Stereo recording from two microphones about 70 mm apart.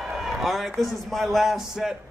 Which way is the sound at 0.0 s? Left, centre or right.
Centre.